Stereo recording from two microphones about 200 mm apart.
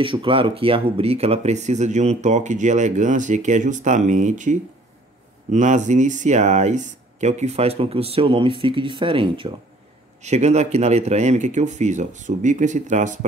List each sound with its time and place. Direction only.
0.0 s speech: 25° right (ahead or behind)